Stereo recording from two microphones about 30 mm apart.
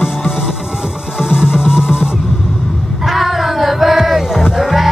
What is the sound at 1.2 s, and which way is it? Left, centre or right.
Music, centre.